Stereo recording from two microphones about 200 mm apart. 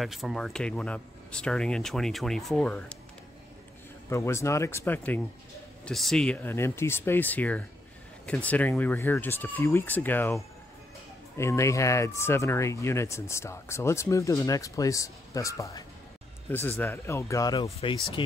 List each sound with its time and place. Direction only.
0.0 s speech: centre (ahead or behind)
4.1 s speech: 15° left (ahead or behind)
17.6 s speech: 30° left (ahead or behind)